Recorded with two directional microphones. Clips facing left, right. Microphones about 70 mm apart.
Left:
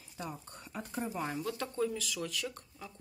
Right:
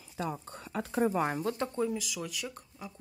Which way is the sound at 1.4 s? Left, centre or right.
Right.